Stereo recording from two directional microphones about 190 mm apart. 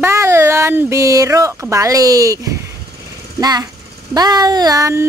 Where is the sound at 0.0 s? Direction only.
15° right (ahead or behind).